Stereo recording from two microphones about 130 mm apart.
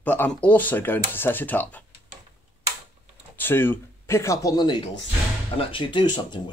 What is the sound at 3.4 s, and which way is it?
Speech, 15° left (ahead or behind).